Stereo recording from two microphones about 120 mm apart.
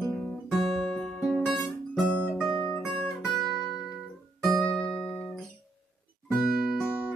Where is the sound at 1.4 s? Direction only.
10° left (ahead or behind).